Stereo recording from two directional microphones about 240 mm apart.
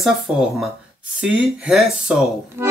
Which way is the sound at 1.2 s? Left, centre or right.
Centre.